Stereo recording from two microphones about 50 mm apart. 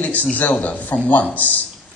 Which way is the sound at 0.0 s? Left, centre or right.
Left.